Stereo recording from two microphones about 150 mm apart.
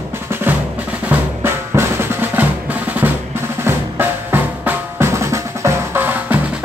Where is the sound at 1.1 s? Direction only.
15° right (ahead or behind).